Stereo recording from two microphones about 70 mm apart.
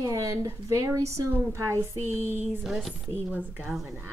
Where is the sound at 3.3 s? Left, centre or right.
Right.